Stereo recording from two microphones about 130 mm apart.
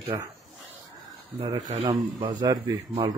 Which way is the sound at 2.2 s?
40° right (ahead or behind).